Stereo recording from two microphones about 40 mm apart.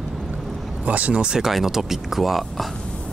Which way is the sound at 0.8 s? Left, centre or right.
Right.